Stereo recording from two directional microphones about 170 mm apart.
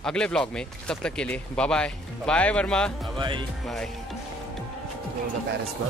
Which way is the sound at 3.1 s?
30° right (ahead or behind).